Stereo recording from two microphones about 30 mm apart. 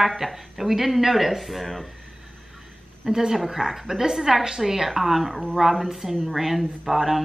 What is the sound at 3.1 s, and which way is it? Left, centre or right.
A woman's voice, centre.